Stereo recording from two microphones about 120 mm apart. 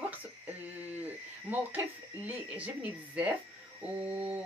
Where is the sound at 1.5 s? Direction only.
15° right (ahead or behind).